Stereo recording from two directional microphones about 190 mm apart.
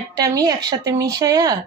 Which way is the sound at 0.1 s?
20° right (ahead or behind).